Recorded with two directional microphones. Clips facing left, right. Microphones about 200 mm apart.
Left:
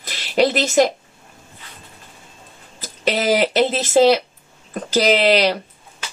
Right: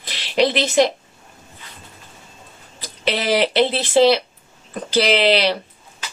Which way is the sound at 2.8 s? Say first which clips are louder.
Left 2 dB; 45° left (ahead or behind).